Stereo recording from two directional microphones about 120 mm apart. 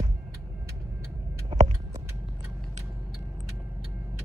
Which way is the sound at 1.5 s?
35° right (ahead or behind).